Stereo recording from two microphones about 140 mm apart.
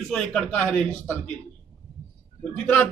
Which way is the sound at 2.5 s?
10° left (ahead or behind).